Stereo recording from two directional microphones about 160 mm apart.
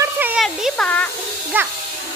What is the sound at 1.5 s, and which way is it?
Speech, 10° right (ahead or behind).